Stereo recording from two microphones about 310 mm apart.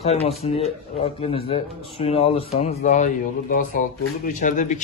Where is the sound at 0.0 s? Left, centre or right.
Centre.